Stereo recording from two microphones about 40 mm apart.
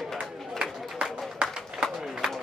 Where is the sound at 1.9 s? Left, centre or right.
Centre.